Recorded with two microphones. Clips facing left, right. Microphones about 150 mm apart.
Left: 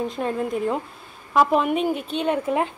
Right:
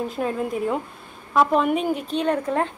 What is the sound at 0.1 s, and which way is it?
A woman's voice, centre (ahead or behind).